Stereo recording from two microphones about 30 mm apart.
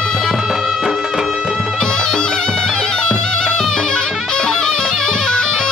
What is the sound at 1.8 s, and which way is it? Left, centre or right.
Music, centre.